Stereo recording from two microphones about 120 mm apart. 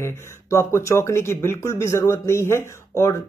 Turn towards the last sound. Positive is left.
turn(degrees=20)  # may be behind; listen again after turning